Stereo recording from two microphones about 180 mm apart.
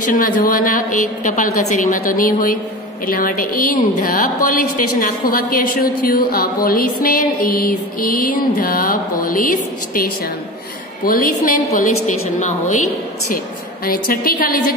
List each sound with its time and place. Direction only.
0.0 s a woman's voice: 50° left (ahead or behind)
11.1 s a woman's voice: 50° left (ahead or behind)
13.8 s a woman's voice: 55° left (ahead or behind)